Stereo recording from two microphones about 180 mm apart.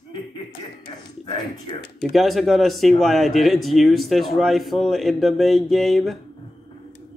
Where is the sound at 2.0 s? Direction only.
Centre (ahead or behind).